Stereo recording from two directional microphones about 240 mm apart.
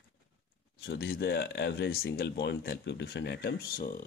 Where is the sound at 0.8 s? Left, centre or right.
Left.